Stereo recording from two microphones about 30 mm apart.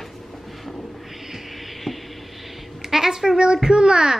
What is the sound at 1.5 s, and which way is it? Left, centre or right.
Music, centre.